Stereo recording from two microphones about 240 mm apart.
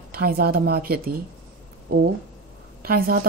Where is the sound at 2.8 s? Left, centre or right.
Right.